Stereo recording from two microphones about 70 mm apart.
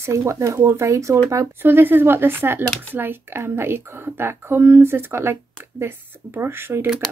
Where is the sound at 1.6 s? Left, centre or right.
Right.